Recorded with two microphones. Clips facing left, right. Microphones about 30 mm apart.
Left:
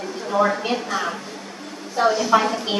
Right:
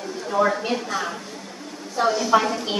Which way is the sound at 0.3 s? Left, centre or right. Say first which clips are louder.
Left 1 dB; left.